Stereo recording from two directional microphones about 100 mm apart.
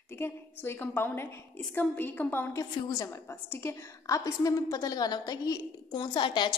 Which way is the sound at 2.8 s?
35° left (ahead or behind).